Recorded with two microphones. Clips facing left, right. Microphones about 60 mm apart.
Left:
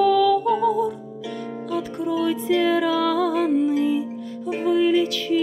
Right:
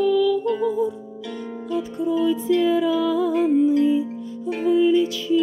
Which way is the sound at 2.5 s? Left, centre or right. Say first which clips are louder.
Left 1 dB; left.